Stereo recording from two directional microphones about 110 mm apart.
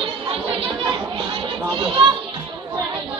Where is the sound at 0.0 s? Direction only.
55° right (ahead or behind).